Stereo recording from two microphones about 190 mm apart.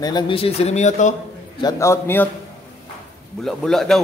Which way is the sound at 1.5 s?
20° left (ahead or behind).